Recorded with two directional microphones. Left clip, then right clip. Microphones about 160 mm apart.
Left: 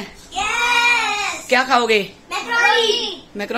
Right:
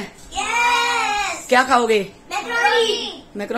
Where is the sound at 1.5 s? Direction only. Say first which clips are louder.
Even; 20° right (ahead or behind).